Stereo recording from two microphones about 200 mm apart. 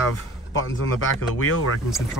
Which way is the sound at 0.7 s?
85° left.